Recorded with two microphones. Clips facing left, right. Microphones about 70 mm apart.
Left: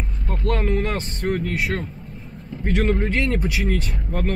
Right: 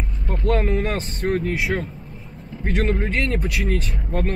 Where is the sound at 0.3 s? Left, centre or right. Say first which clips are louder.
Right 2 dB; centre.